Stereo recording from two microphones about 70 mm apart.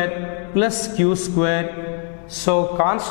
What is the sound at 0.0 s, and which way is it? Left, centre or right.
A man's voice, centre.